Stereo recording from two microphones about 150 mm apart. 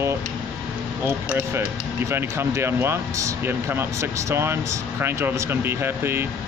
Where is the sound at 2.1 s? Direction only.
15° right (ahead or behind).